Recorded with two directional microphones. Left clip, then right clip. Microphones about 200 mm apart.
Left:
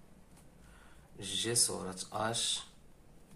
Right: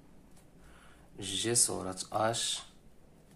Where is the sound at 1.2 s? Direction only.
45° right (ahead or behind).